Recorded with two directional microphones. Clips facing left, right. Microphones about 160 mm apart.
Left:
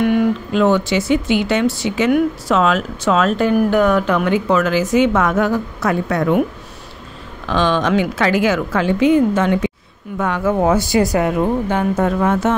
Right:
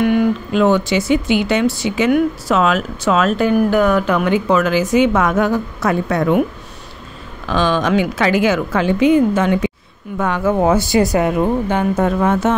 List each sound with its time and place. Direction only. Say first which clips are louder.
0.5 s speech: right 1 dB; 15° right (ahead or behind)
7.4 s speech: even; 10° right (ahead or behind)
10.1 s speech: right 1 dB; 30° right (ahead or behind)